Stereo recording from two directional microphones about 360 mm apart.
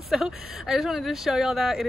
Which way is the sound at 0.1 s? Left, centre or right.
Centre.